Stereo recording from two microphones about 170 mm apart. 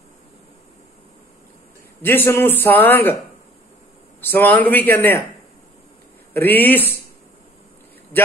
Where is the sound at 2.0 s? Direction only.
15° left (ahead or behind).